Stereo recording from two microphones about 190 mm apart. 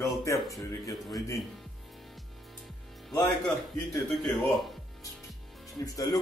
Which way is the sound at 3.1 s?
5° left (ahead or behind).